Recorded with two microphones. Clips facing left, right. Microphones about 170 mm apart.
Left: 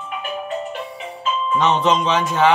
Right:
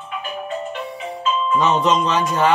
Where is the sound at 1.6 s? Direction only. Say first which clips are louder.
Left 1 dB; centre (ahead or behind).